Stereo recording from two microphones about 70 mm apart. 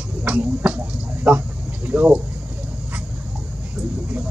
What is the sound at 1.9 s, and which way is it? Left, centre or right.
Speech, right.